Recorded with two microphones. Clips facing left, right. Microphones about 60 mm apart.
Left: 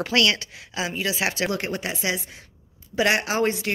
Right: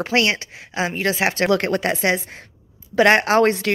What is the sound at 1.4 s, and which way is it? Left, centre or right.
Speech, right.